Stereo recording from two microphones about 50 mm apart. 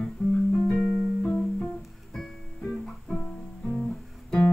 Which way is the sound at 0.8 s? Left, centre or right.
Right.